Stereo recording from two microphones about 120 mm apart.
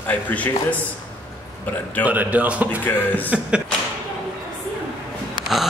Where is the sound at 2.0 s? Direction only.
15° right (ahead or behind).